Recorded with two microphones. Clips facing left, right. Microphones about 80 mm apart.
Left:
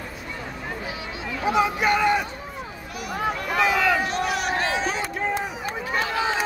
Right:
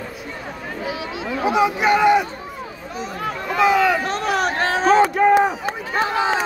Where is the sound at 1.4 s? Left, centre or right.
Centre.